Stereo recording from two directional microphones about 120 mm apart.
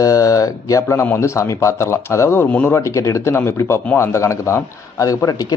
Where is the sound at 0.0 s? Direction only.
25° left (ahead or behind).